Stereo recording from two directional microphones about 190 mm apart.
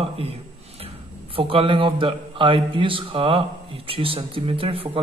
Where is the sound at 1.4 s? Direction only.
30° right (ahead or behind).